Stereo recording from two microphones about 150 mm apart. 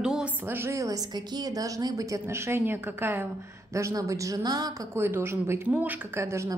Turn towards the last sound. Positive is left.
turn(degrees=-20)  # may be behind; listen again after turning